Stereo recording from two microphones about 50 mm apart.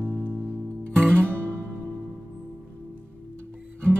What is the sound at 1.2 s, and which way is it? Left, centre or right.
Music, right.